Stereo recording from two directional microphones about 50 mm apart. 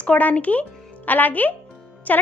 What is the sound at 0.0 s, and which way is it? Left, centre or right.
A woman's voice, left.